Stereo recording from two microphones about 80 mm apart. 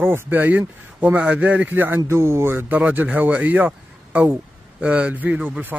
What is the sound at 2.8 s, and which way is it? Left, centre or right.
A man's voice, centre.